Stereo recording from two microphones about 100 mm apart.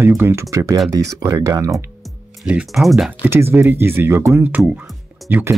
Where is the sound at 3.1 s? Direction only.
15° right (ahead or behind).